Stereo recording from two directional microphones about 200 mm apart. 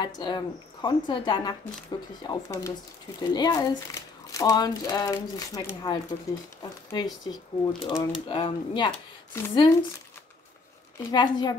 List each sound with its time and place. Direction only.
0.0 s speech: 20° left (ahead or behind)
11.1 s speech: 20° left (ahead or behind)